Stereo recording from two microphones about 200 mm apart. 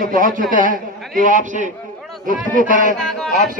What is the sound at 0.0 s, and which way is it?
A man's voice, 40° right (ahead or behind).